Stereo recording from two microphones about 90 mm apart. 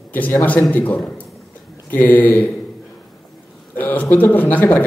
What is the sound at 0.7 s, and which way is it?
A man's voice, 20° left (ahead or behind).